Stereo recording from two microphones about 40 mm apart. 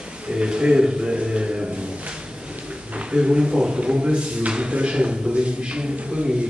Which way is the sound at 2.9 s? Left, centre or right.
Right.